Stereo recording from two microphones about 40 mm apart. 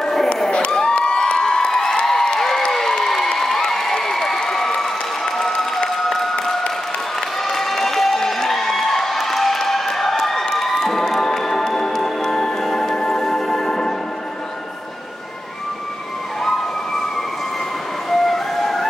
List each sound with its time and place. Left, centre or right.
0.0 s cheering: centre
2.0 s a sound: centre
2.7 s crowd: centre
5.9 s applause: centre
7.2 s music: centre
7.6 s crowd: centre
10.5 s music: centre
16.4 s emergency vehicle: centre
18.1 s a sound: centre